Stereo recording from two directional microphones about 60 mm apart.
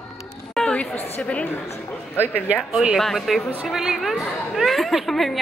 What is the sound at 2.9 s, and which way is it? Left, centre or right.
A woman's voice, centre.